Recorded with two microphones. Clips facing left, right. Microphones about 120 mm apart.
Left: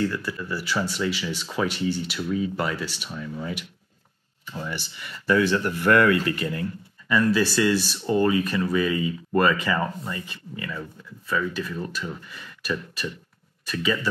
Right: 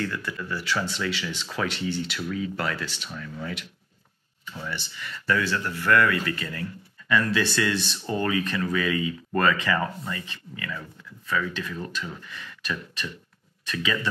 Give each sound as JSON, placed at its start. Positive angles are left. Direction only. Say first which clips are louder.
{"t": 0.0, "sound": "speech", "louder": "left 4 dB", "side_deg": 5}
{"t": 5.9, "sound": "speech", "louder": "left 2 dB", "side_deg": 30}
{"t": 7.1, "sound": "speech", "louder": "left 3 dB", "side_deg": 5}
{"t": 11.2, "sound": "speech", "louder": "left 2 dB", "side_deg": 5}